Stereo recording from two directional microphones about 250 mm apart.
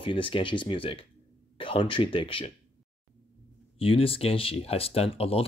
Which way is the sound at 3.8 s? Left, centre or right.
Left.